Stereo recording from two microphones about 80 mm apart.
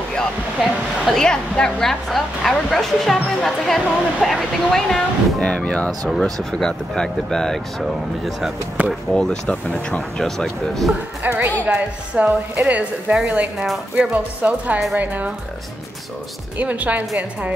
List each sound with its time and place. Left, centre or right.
1.0 s speech: centre
5.9 s speech: centre
9.1 s speech: centre
11.2 s a woman's voice: right
16.5 s a woman's voice: centre